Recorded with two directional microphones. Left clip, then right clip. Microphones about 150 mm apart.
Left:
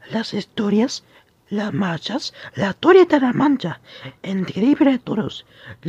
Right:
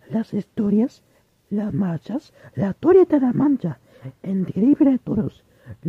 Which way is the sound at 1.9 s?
30° right (ahead or behind).